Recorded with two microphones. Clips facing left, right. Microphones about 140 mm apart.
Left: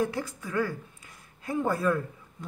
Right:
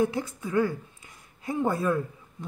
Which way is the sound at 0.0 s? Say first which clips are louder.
Right 3 dB; 20° right (ahead or behind).